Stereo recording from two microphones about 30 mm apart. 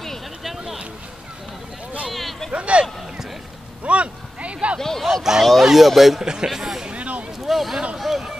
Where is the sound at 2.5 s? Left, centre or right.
Right.